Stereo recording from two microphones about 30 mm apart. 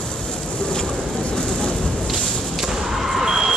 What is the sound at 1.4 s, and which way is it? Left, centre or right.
Vehicle, left.